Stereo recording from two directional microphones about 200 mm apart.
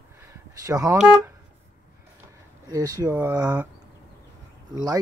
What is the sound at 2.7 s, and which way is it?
Speech, 15° right (ahead or behind).